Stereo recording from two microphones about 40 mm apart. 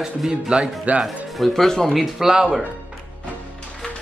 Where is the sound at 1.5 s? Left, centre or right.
Centre.